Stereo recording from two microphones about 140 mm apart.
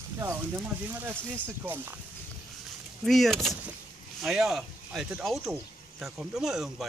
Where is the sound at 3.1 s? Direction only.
Centre (ahead or behind).